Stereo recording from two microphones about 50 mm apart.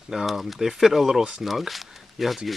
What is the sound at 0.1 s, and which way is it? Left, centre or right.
Speech, centre.